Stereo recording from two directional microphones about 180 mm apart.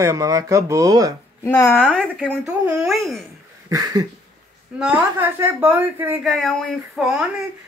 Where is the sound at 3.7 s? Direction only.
20° right (ahead or behind).